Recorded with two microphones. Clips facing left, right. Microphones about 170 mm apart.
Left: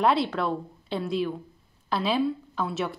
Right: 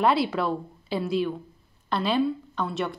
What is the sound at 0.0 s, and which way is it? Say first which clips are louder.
A woman's voice: right 1 dB; 5° right (ahead or behind).